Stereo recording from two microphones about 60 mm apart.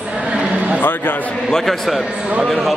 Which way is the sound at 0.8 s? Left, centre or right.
Left.